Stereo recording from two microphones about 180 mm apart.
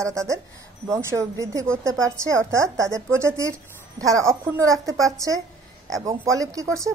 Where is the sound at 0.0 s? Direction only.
15° right (ahead or behind).